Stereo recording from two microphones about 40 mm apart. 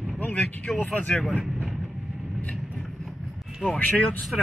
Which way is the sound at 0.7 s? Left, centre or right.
Centre.